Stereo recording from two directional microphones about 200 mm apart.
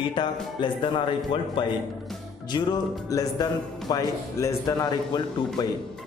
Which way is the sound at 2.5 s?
20° left (ahead or behind).